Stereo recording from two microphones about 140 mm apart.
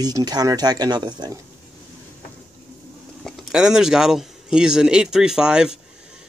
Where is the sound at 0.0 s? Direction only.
30° right (ahead or behind).